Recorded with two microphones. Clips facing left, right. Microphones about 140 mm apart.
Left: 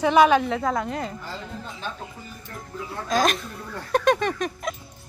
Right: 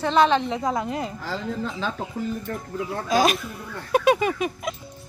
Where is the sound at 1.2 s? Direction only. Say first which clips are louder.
Right 7 dB; 90° right.